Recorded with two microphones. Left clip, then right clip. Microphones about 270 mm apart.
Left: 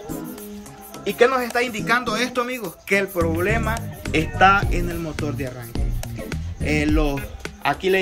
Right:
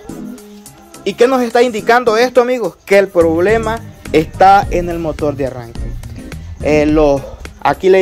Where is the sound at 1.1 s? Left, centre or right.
Right; by 5.5 s centre.